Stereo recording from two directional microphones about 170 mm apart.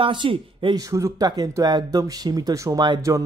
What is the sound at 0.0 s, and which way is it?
Speech, 30° right (ahead or behind).